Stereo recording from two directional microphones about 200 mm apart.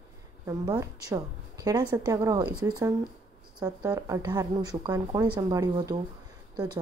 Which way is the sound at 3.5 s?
15° right (ahead or behind).